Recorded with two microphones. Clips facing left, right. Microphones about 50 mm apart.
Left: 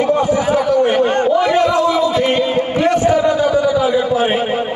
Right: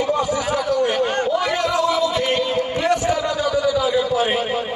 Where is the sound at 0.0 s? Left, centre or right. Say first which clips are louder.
Left 6 dB; left.